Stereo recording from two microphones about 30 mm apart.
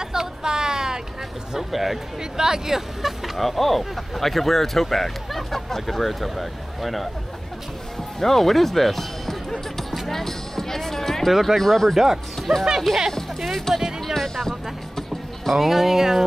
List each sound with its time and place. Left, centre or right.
0.0 s a sound: centre
1.6 s speech: centre
2.3 s speech: centre
3.3 s speech: centre
8.2 s speech: centre
9.5 s music: centre
11.2 s speech: centre
11.9 s speech: centre
12.4 s speech: centre
15.5 s speech: centre